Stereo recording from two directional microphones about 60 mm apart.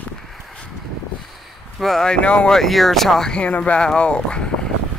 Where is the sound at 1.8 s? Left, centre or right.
Centre.